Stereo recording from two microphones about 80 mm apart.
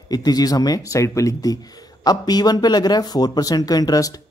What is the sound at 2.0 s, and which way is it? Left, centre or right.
A man's voice, left.